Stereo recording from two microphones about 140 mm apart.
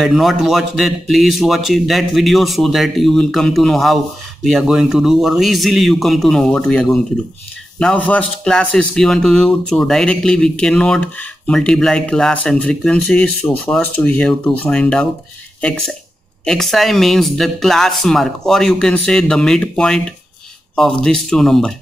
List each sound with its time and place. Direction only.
0.0 s a man's voice: centre (ahead or behind)